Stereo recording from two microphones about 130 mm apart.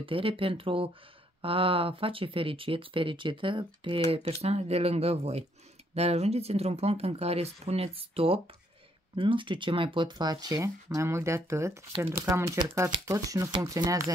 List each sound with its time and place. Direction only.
0.0 s speech: 45° right (ahead or behind)
4.4 s speech: 50° right (ahead or behind); by 14.1 s 25° right (ahead or behind)